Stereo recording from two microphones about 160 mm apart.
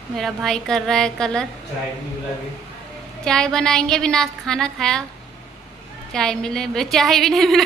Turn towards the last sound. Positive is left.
turn(degrees=0)  # may be behind; listen again after turning